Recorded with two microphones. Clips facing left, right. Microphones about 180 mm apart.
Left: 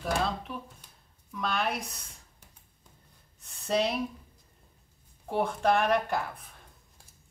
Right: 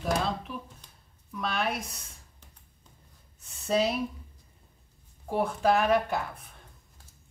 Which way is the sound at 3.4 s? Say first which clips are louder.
Right 1 dB; centre (ahead or behind).